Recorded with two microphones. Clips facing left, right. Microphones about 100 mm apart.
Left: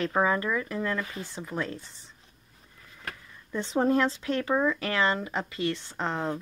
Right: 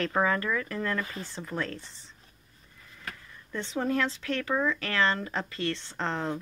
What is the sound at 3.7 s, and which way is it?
Speech, 25° left (ahead or behind).